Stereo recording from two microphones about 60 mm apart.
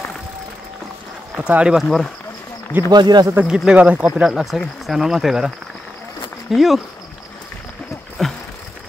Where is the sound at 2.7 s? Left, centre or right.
Right.